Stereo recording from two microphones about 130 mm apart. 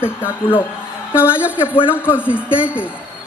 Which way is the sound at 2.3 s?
10° right (ahead or behind).